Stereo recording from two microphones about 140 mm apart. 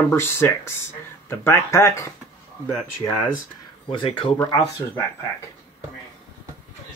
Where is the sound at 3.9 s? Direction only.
35° left (ahead or behind).